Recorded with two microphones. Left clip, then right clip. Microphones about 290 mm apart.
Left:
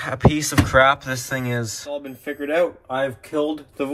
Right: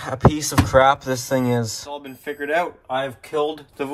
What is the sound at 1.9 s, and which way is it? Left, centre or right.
Speech, centre.